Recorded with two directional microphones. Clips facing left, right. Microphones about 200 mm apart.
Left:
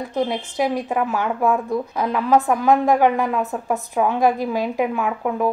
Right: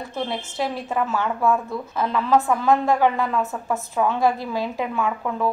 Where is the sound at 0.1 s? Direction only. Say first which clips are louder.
Left 6 dB; 15° left (ahead or behind).